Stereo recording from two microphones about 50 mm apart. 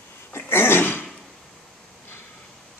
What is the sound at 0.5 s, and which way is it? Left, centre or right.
Sneeze, left.